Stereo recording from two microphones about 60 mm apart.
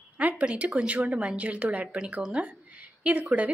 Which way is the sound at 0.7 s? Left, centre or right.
Centre.